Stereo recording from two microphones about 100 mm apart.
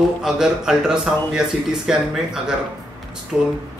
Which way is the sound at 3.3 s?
10° right (ahead or behind).